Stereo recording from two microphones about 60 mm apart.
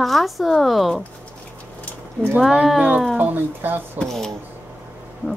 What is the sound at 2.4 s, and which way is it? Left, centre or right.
Speech, centre.